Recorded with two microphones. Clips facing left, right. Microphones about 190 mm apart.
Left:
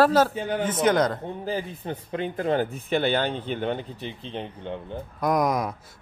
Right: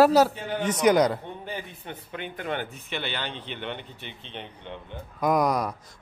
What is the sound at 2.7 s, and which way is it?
Speech, 45° left (ahead or behind).